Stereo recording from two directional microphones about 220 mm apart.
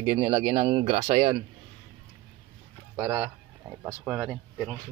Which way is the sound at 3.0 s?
10° right (ahead or behind).